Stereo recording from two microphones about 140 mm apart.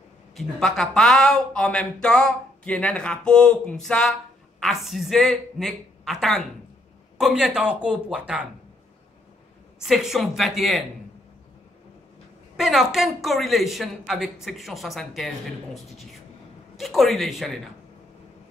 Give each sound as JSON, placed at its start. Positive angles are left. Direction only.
{"t": 0.4, "sound": "speech", "side_deg": 5}
{"t": 9.8, "sound": "speech", "side_deg": -5}
{"t": 12.5, "sound": "speech", "side_deg": 0}